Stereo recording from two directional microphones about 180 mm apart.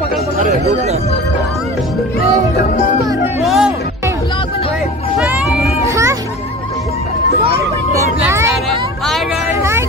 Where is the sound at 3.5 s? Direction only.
Centre (ahead or behind).